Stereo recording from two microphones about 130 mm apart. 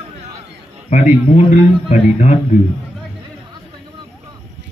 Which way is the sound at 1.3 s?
60° left (ahead or behind).